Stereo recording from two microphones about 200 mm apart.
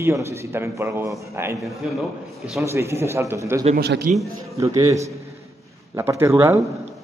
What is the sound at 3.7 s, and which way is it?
Speech, 55° right (ahead or behind).